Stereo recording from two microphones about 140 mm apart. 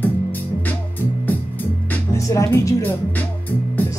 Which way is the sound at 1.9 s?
20° left (ahead or behind).